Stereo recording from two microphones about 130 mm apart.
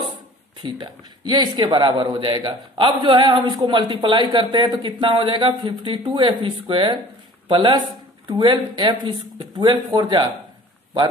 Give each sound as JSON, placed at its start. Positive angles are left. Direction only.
{"t": 0.6, "sound": "a man's voice", "side_deg": -35}